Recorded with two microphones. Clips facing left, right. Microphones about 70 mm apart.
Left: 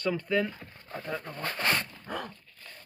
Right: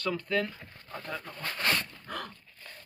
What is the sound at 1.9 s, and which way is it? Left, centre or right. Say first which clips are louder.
Dog: left 2 dB; centre.